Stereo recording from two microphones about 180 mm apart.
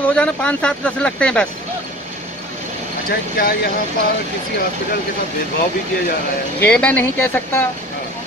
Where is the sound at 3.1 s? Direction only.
55° left (ahead or behind).